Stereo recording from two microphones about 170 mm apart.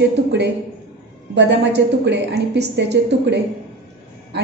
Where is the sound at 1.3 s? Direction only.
85° right.